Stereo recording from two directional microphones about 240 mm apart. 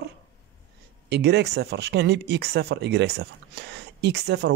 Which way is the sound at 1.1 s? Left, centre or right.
Right.